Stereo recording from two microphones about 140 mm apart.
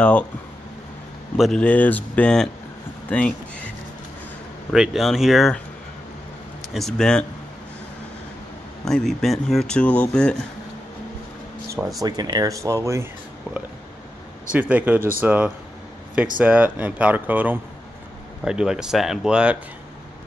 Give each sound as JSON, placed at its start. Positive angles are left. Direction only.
{"t": 1.3, "sound": "speech", "side_deg": 0}
{"t": 3.1, "sound": "a sound", "side_deg": 10}
{"t": 4.7, "sound": "speech", "side_deg": -5}
{"t": 6.7, "sound": "speech", "side_deg": 0}
{"t": 8.8, "sound": "speech", "side_deg": 0}
{"t": 12.0, "sound": "speech", "side_deg": -30}